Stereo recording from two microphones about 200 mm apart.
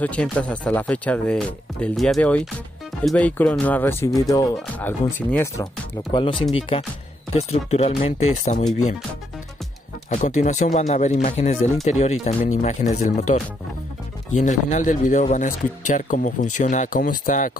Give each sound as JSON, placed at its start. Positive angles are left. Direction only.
{"t": 0.0, "sound": "speech", "side_deg": 5}
{"t": 6.1, "sound": "speech", "side_deg": 25}
{"t": 10.0, "sound": "speech", "side_deg": 35}